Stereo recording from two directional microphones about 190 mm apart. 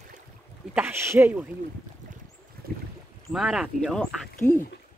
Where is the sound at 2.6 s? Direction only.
50° right (ahead or behind).